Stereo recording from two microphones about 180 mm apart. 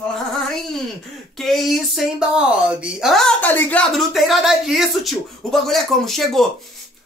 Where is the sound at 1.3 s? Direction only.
Centre (ahead or behind).